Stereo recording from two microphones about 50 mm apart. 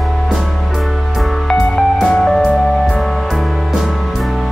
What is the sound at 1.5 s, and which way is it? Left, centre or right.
Music, centre.